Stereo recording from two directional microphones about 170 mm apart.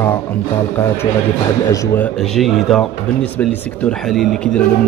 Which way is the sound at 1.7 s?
20° left (ahead or behind).